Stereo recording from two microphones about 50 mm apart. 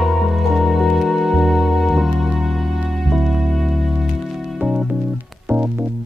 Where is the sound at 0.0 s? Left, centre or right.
Centre.